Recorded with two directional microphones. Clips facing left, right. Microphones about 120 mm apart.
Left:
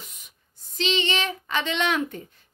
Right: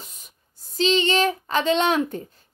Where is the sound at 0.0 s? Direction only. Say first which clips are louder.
Right 2 dB; 35° right (ahead or behind).